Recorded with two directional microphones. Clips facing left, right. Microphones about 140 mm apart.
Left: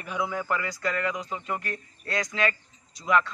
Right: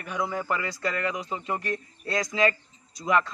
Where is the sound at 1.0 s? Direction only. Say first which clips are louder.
Even; 30° right (ahead or behind).